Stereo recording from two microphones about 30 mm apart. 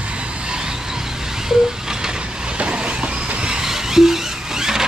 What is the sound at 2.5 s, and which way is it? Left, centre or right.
Train, right.